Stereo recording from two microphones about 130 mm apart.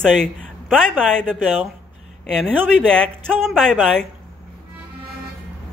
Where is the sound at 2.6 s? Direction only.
5° left (ahead or behind).